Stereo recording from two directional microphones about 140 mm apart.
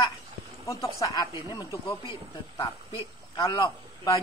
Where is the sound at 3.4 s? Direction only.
25° left (ahead or behind).